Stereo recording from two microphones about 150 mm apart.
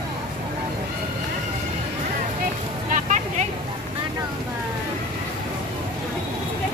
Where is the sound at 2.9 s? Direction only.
55° right (ahead or behind).